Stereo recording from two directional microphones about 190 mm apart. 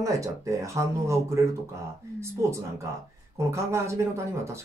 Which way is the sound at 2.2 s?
15° right (ahead or behind).